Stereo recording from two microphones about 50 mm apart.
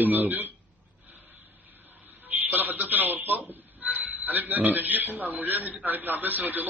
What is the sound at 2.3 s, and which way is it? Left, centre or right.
A man's voice, right.